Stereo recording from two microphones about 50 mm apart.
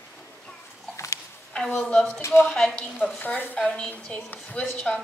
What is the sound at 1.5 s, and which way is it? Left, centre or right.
A woman's voice, centre.